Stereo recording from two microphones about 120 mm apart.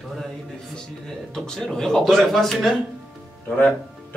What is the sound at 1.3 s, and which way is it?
A man's voice, 5° left (ahead or behind).